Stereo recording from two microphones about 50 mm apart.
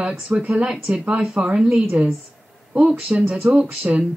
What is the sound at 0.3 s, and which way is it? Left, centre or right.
A woman's voice, right.